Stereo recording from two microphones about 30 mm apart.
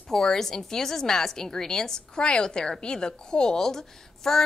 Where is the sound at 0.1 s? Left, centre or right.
Centre.